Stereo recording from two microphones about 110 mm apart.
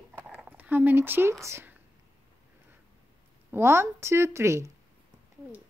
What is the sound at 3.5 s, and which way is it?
Speech, 25° right (ahead or behind).